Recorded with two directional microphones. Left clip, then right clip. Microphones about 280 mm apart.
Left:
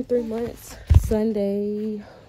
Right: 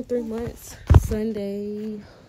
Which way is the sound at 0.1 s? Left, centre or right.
Centre.